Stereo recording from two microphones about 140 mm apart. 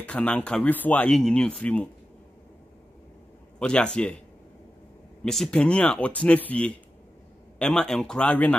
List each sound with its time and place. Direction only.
0.0 s speech: 10° left (ahead or behind)
3.5 s speech: 5° left (ahead or behind)
5.2 s speech: 5° left (ahead or behind)